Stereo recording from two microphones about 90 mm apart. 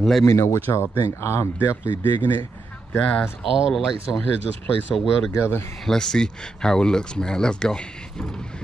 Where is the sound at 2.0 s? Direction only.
20° left (ahead or behind).